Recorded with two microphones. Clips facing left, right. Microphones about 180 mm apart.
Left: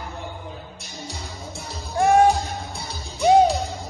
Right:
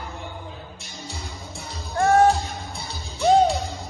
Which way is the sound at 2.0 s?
15° left (ahead or behind).